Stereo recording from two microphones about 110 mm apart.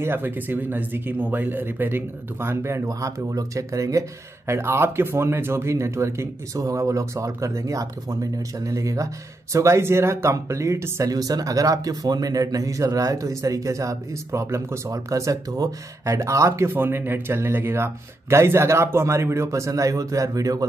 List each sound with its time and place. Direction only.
0.0 s speech: 20° right (ahead or behind)